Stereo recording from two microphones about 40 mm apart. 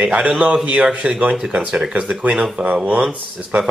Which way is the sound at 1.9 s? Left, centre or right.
Right.